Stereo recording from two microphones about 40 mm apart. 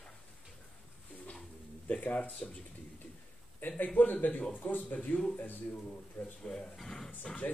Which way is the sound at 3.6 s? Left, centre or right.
Left.